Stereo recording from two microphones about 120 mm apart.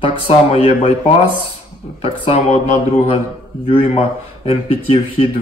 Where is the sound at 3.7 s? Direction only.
50° left (ahead or behind).